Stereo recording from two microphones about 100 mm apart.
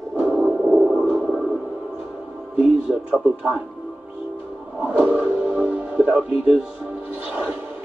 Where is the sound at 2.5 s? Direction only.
10° right (ahead or behind).